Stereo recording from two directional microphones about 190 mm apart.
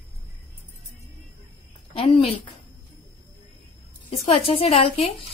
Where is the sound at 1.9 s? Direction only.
30° left (ahead or behind).